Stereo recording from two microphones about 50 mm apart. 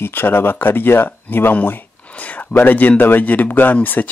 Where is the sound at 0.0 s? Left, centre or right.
Left.